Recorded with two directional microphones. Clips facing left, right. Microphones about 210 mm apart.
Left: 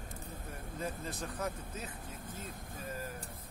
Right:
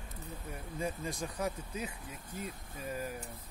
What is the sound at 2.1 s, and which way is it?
Speech, 50° left (ahead or behind).